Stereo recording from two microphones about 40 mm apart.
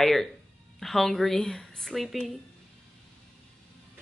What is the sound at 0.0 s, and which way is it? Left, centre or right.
Speech, centre.